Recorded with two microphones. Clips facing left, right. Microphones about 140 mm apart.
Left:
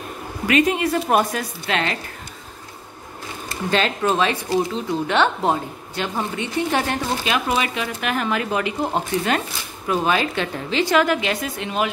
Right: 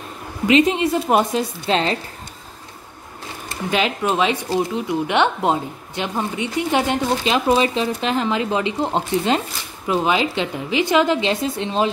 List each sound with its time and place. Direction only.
0.5 s speech: 25° right (ahead or behind)
3.7 s speech: 15° right (ahead or behind)